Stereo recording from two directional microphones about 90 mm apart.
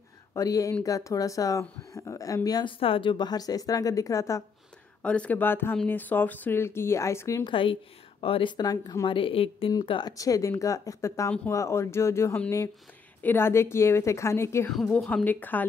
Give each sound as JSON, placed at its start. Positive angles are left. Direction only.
{"t": 0.3, "sound": "speech", "side_deg": 35}
{"t": 2.6, "sound": "speech", "side_deg": 80}
{"t": 5.0, "sound": "speech", "side_deg": 15}
{"t": 7.4, "sound": "a woman's voice", "side_deg": 75}
{"t": 9.0, "sound": "speech", "side_deg": 75}
{"t": 10.0, "sound": "speech", "side_deg": 40}
{"t": 14.9, "sound": "speech", "side_deg": 10}
{"t": 15.2, "sound": "speech", "side_deg": 20}